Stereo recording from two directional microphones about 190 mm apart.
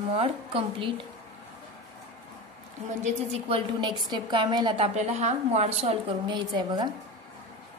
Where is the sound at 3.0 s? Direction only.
30° right (ahead or behind).